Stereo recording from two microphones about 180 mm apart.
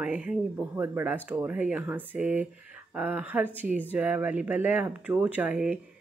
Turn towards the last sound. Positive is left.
turn(degrees=-5)  # may be behind; listen again after turning